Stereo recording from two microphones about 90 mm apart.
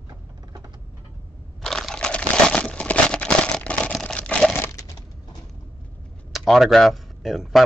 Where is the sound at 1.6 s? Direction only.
5° left (ahead or behind).